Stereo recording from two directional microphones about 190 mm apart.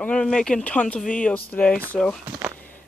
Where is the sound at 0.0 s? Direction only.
5° left (ahead or behind).